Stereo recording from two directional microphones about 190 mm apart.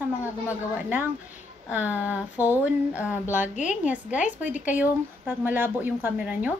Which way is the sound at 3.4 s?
40° left (ahead or behind).